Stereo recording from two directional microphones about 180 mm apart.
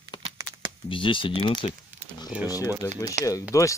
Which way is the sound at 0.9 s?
30° left (ahead or behind).